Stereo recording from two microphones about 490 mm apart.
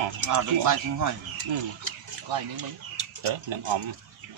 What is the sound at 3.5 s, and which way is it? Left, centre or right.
Speech, right.